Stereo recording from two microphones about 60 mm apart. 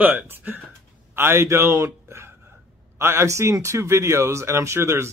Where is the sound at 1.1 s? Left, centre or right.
Right.